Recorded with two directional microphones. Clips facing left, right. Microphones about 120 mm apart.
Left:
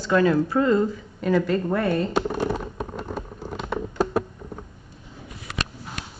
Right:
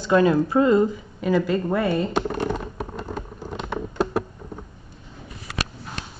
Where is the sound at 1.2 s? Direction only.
5° right (ahead or behind).